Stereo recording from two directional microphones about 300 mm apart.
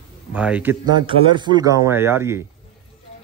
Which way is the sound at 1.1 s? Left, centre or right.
Centre.